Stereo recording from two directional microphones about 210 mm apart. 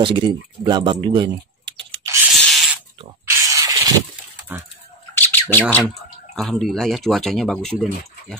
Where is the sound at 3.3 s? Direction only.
15° right (ahead or behind).